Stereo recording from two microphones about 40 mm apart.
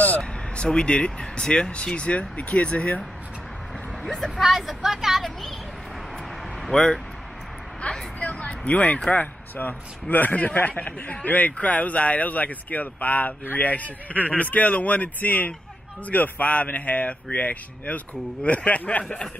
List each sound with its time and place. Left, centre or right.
0.2 s speech: centre
4.0 s speech: centre
4.4 s speech: centre
6.7 s speech: left
7.8 s speech: left
9.2 s a man's voice: left